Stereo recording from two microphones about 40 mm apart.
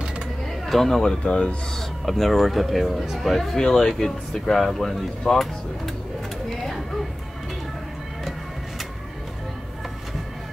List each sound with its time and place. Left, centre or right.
0.7 s speech: centre
1.0 s speech: left
2.0 s speech: centre
6.5 s a sound: centre